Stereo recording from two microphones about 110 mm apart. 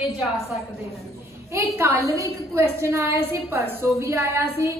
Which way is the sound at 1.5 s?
25° right (ahead or behind).